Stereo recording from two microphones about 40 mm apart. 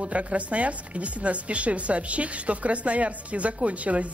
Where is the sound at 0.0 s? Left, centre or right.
Right.